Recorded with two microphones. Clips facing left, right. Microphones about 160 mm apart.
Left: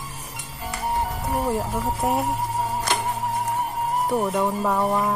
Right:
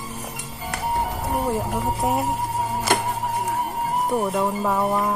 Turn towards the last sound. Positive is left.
turn(degrees=0)  # may be behind; listen again after turning